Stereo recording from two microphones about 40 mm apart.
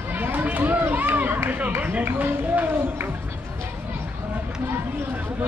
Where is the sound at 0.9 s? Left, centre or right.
Right.